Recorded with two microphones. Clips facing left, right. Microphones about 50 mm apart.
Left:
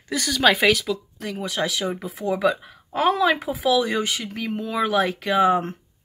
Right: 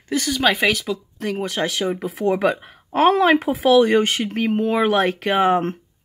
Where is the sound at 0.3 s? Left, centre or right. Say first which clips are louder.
Left 1 dB; centre.